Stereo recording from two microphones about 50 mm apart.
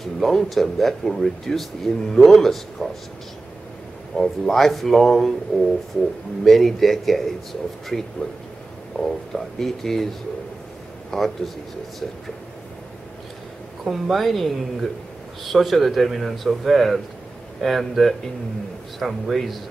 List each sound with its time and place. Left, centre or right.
0.0 s speech: centre
4.2 s speech: centre
5.5 s speech: centre
6.4 s speech: centre
11.1 s speech: centre
13.8 s speech: centre